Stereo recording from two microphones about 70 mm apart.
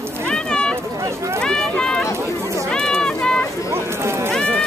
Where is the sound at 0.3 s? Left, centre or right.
Centre.